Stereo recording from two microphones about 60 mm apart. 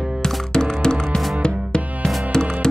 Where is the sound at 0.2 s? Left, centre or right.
Centre.